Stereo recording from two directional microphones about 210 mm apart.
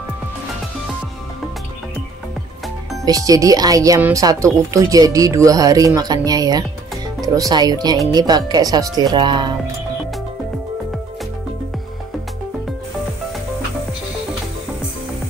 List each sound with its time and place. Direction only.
3.1 s speech: 15° right (ahead or behind)